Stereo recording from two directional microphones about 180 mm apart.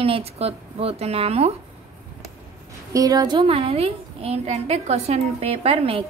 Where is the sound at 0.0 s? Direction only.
35° right (ahead or behind).